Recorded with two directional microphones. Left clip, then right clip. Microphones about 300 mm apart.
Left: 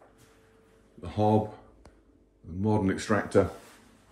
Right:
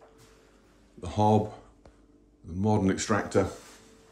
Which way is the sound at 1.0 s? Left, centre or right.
Centre.